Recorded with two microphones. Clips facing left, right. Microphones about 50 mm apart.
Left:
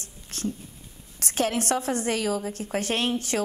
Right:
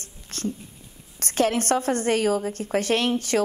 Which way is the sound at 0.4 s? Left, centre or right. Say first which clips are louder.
Right 1 dB; right.